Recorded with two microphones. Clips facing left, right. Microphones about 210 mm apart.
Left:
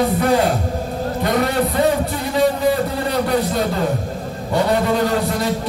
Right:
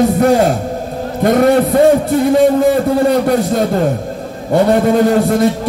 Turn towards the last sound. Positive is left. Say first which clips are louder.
# right 8 dB
turn(degrees=-50)  # may be behind; listen again after turning